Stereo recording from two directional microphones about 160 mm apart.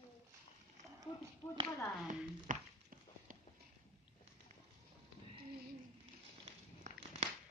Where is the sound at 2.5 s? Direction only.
55° right (ahead or behind).